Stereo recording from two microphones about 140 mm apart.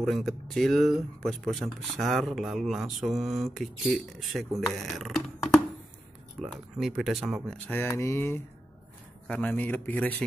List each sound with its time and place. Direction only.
0.0 s speech: centre (ahead or behind)
7.4 s speech: 10° left (ahead or behind)